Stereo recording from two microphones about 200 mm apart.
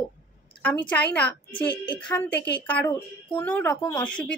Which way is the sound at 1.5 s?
20° left (ahead or behind).